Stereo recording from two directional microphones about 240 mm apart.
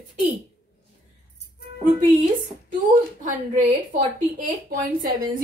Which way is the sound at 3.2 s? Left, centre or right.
Right.